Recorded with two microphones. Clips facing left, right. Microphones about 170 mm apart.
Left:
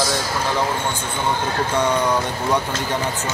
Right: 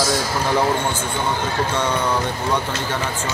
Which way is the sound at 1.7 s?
10° left (ahead or behind).